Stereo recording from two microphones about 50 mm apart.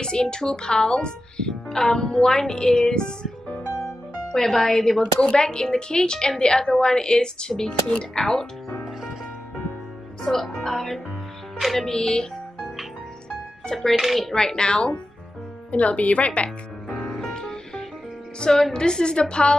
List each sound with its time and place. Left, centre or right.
0.0 s a woman's voice: centre
3.6 s music: left
4.3 s a woman's voice: centre
5.2 s a woman's voice: centre
10.2 s a woman's voice: centre
13.7 s speech: centre
14.3 s a woman's voice: centre
17.3 s music: centre
18.4 s a woman's voice: centre